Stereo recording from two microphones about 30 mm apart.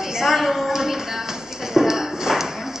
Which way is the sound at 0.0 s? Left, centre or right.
Centre.